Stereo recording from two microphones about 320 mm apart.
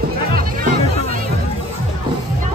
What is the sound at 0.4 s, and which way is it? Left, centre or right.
Music, right.